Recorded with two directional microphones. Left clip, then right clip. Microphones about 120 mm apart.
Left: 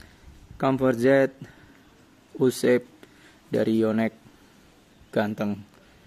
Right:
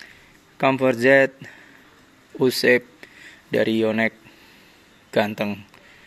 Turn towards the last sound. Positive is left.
turn(degrees=30)  # may be behind; listen again after turning